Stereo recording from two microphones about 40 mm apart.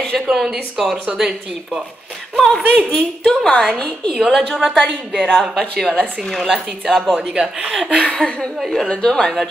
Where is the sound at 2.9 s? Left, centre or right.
Left.